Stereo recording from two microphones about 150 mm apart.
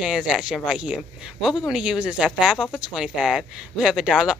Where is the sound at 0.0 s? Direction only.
5° right (ahead or behind).